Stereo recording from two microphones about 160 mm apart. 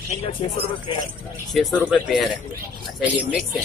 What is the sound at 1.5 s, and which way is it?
Speech, centre (ahead or behind).